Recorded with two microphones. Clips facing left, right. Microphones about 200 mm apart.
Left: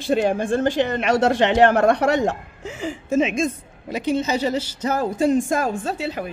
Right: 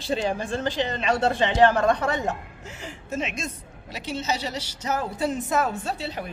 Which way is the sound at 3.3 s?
55° left (ahead or behind).